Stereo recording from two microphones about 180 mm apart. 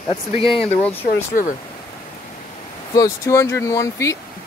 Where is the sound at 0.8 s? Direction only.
10° left (ahead or behind).